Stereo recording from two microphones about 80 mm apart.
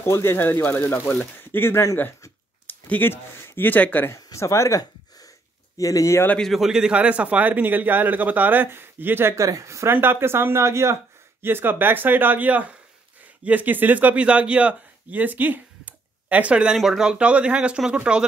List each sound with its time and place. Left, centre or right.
0.0 s speech: left
4.3 s gasp: left
5.8 s speech: left
6.4 s a man's voice: centre; by 9.9 s right
9.9 s a man's voice: right
16.7 s speech: centre